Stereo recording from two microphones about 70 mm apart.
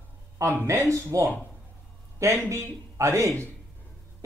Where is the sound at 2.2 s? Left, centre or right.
Right.